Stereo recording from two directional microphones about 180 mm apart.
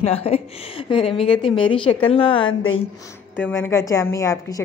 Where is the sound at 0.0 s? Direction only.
35° left (ahead or behind).